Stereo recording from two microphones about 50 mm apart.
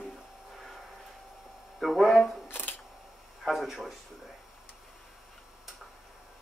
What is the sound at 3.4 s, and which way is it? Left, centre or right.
Speech, centre.